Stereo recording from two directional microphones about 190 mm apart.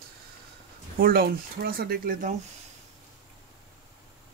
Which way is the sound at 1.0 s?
55° right (ahead or behind).